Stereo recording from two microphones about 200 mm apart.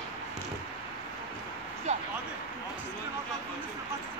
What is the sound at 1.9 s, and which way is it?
Vehicle, 35° right (ahead or behind).